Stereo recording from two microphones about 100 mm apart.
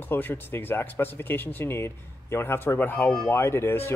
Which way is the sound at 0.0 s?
20° left (ahead or behind).